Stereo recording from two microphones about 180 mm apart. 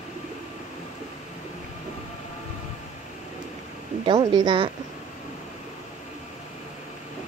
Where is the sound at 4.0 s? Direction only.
25° right (ahead or behind).